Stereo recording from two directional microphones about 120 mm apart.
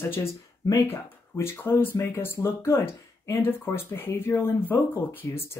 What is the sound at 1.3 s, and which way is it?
Speech, 20° left (ahead or behind).